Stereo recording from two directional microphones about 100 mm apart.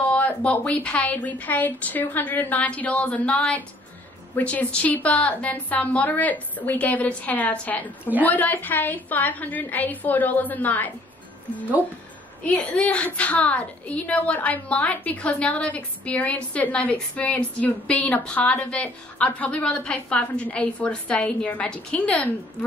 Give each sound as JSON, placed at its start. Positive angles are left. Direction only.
{"t": 0.0, "sound": "a woman's voice", "side_deg": 15}
{"t": 12.4, "sound": "a woman's voice", "side_deg": 15}